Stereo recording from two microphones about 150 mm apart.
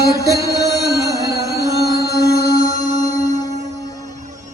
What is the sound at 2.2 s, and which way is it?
Music, 90° left.